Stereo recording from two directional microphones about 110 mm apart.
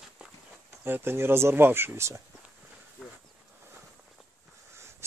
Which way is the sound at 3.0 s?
5° left (ahead or behind).